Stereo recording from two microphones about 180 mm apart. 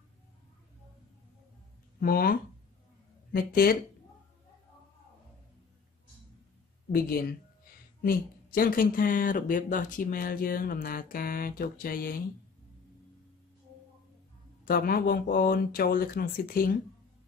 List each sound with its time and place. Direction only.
2.0 s speech: 55° left (ahead or behind)
6.9 s speech: 55° left (ahead or behind)
14.6 s speech: 55° left (ahead or behind)